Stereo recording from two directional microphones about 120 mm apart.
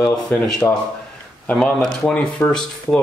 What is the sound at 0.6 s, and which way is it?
Speech, 15° left (ahead or behind).